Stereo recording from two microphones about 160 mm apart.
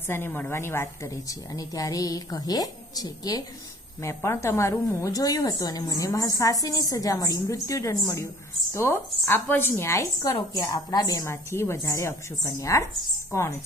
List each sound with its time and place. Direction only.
0.1 s a woman's voice: 15° left (ahead or behind)